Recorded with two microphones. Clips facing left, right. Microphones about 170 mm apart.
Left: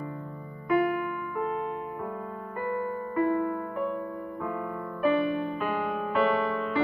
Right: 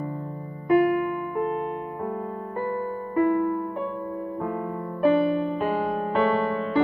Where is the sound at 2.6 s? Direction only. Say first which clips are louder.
Right 1 dB; 30° right (ahead or behind).